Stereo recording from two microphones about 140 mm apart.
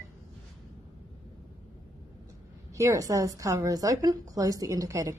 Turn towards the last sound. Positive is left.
turn(degrees=-25)  # may be behind; listen again after turning